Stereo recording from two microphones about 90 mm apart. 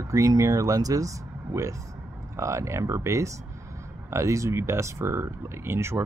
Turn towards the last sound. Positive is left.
turn(degrees=-30)  # may be behind; listen again after turning